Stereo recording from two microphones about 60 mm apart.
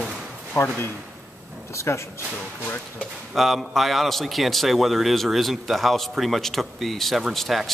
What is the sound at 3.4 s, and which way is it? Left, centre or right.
A man's voice, centre.